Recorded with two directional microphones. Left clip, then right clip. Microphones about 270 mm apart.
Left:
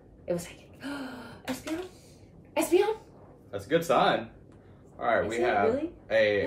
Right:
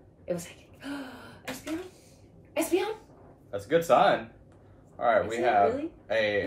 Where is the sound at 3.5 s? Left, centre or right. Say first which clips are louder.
Right 3 dB; centre.